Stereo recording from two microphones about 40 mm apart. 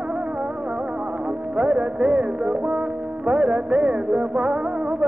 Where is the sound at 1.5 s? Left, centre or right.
Right.